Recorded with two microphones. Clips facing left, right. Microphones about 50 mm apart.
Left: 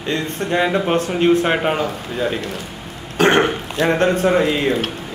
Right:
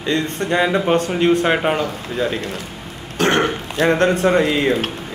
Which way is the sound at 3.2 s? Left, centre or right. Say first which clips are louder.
Left 3 dB; centre.